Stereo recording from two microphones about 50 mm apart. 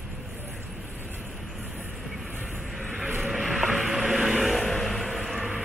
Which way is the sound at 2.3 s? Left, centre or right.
Right.